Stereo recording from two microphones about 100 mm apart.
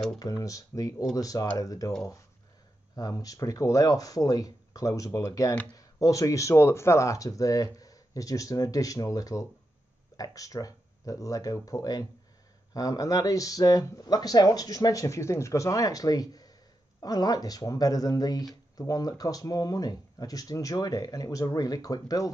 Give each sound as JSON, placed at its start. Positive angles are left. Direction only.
{"t": 0.2, "sound": "speech", "side_deg": 35}
{"t": 3.0, "sound": "speech", "side_deg": 35}